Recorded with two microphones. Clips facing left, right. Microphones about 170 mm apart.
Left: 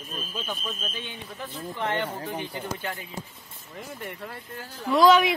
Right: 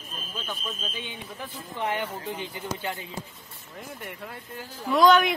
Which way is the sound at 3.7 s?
Centre (ahead or behind).